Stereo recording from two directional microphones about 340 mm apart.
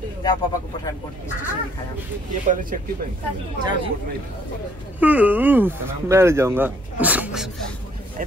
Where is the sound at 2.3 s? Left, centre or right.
Right.